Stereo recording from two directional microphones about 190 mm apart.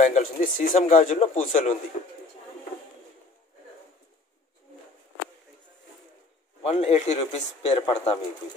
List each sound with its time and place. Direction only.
0.0 s a man's voice: 45° left (ahead or behind)
6.6 s a man's voice: 35° left (ahead or behind)